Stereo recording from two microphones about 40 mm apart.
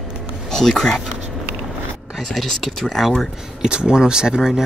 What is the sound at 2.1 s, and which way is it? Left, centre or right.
Speech, centre.